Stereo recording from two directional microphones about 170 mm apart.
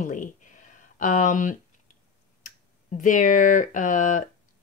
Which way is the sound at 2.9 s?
50° left (ahead or behind).